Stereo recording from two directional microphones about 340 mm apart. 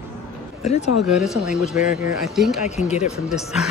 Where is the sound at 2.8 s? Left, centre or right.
Centre.